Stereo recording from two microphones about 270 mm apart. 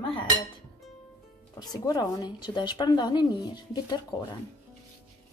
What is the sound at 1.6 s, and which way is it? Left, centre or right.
Speech, centre.